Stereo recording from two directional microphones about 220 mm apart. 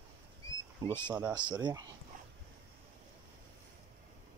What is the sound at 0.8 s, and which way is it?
Speech, 15° right (ahead or behind).